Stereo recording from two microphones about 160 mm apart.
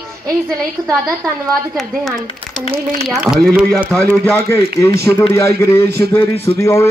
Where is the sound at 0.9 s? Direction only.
20° right (ahead or behind).